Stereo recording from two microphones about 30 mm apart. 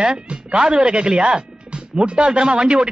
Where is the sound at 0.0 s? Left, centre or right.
Right.